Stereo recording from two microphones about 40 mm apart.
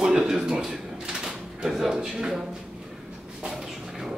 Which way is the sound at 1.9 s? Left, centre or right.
Centre.